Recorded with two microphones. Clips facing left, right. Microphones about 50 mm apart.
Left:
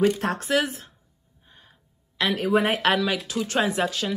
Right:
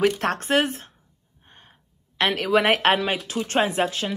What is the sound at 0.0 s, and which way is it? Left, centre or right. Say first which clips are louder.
Speech: right 1 dB; right.